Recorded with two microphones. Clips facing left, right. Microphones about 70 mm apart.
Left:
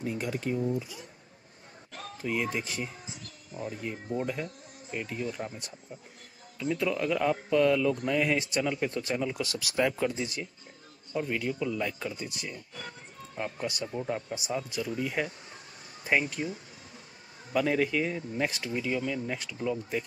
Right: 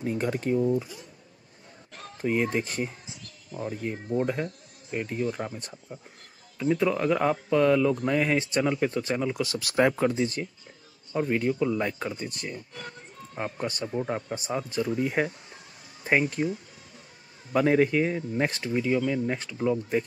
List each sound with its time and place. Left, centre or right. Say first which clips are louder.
0.0 s speech: right 4 dB; right
2.2 s speech: right 5 dB; right
9.6 s speech: right 5 dB; right
11.1 s speech: right 5 dB; right
13.7 s speech: right 4 dB; right
17.6 s speech: right 5 dB; right